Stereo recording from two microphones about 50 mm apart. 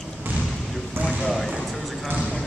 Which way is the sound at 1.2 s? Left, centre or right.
Centre.